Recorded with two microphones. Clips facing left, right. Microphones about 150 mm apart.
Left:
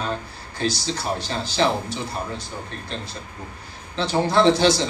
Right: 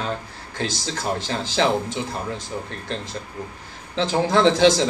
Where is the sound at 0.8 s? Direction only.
90° right.